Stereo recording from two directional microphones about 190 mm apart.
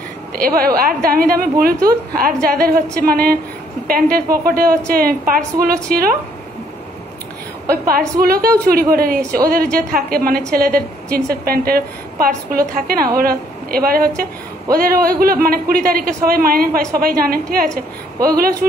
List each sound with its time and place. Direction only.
0.3 s a man's voice: 50° right (ahead or behind)
8.2 s a man's voice: 50° right (ahead or behind)